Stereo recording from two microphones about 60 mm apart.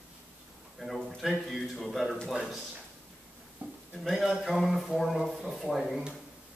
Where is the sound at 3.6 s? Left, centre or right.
Right.